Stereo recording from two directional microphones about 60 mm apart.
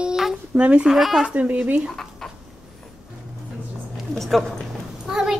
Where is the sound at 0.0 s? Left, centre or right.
Centre.